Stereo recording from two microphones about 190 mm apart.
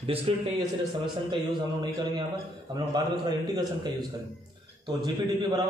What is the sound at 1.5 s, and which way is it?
Speech, 25° right (ahead or behind).